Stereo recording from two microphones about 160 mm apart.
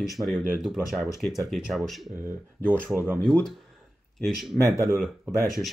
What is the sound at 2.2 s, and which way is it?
Speech, 15° right (ahead or behind).